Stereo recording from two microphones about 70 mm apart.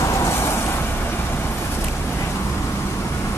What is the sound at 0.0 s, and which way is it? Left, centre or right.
Vehicle, left.